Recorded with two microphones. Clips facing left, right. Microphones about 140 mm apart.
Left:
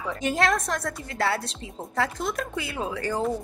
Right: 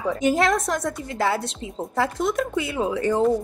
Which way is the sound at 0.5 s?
Centre (ahead or behind).